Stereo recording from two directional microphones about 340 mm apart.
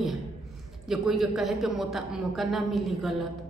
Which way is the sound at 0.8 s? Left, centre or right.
Centre.